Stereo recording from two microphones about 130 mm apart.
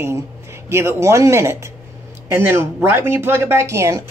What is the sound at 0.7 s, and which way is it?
Speech, 20° right (ahead or behind).